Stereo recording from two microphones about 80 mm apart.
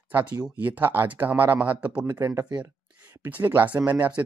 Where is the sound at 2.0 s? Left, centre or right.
Right.